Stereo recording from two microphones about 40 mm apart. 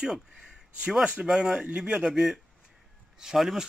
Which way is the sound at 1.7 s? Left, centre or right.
Right.